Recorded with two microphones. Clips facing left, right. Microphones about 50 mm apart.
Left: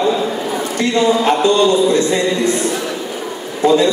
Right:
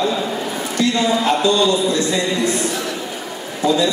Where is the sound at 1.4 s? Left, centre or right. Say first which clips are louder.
Left 5 dB; left.